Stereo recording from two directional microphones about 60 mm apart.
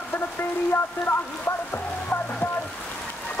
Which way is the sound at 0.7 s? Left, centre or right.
Left.